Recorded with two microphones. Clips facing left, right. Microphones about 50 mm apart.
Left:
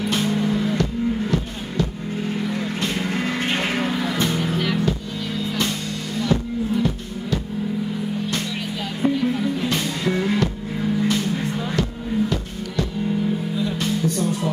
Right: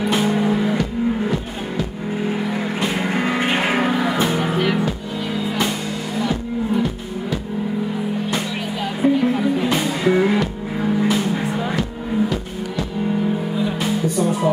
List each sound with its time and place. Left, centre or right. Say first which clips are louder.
0.0 s music: right 3 dB; centre
9.0 s music: right 4 dB; centre
13.6 s music: right 2 dB; centre